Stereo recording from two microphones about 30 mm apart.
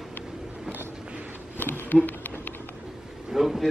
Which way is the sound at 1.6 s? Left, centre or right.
Left.